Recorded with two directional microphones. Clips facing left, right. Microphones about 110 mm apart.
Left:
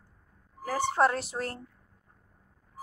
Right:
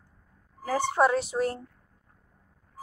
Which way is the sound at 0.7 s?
20° right (ahead or behind).